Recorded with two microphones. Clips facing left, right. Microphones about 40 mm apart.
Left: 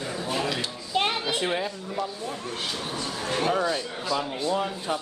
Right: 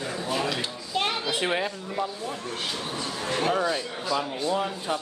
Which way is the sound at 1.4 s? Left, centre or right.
Right.